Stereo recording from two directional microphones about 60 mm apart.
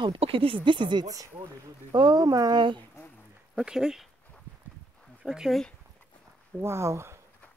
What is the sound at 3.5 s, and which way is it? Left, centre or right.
Speech, centre.